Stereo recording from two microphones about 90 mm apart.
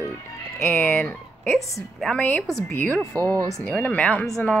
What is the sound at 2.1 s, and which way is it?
Music, 20° left (ahead or behind).